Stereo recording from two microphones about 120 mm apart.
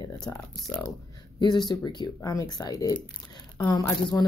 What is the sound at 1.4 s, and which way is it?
Speech, 35° left (ahead or behind).